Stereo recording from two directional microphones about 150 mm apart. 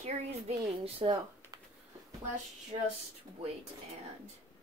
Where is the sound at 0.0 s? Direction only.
45° right (ahead or behind).